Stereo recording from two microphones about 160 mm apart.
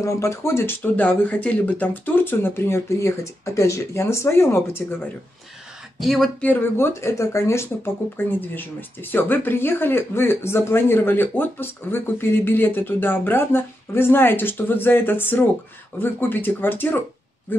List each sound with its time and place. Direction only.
0.0 s speech: 20° left (ahead or behind)
5.9 s speech: centre (ahead or behind)